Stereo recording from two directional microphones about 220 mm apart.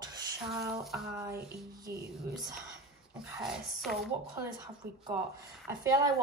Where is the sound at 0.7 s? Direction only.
Centre (ahead or behind).